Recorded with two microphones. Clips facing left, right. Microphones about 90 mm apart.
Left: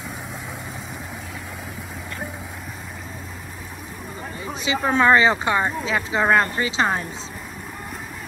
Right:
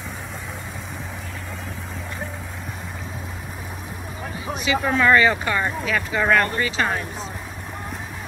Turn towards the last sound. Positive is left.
turn(degrees=25)  # may be behind; listen again after turning